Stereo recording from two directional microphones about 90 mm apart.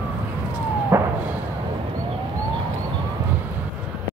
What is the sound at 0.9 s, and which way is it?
Fireworks, 30° right (ahead or behind).